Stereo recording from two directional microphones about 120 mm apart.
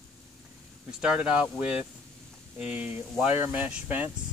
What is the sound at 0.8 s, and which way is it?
Speech, 5° right (ahead or behind).